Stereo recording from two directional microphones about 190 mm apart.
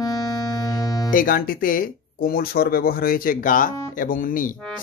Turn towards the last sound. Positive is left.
turn(degrees=45)  # may be behind; listen again after turning